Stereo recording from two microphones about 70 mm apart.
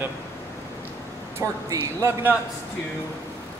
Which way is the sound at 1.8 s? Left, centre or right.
Right.